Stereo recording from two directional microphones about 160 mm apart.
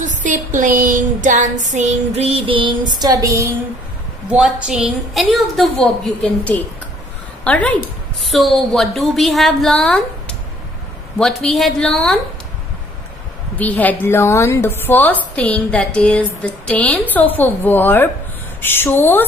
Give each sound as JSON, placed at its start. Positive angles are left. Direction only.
{"t": 0.0, "sound": "a sound", "side_deg": -50}
{"t": 4.3, "sound": "a woman's voice", "side_deg": -5}
{"t": 13.6, "sound": "a woman's voice", "side_deg": 10}